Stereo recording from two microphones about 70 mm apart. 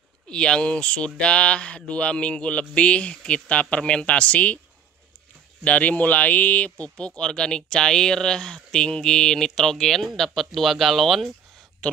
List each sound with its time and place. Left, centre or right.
0.3 s speech: centre
5.6 s speech: centre